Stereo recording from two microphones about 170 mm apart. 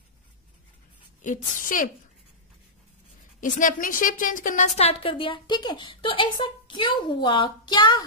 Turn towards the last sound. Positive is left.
turn(degrees=25)  # may be behind; listen again after turning